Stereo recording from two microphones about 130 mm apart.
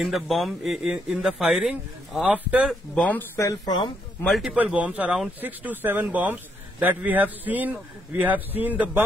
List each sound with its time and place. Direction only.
0.0 s speech: centre (ahead or behind)
2.9 s speech: 10° left (ahead or behind)
3.3 s speech: 30° left (ahead or behind)
4.2 s speech: centre (ahead or behind)
4.5 s a man's voice: 10° right (ahead or behind)